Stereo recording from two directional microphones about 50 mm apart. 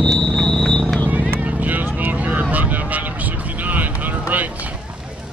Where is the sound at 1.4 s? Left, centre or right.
Right.